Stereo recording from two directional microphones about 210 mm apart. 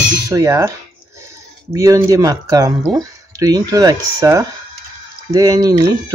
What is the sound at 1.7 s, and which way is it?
Speech, 15° right (ahead or behind).